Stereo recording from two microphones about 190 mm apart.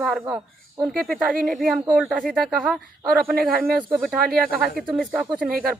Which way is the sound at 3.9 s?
Centre (ahead or behind).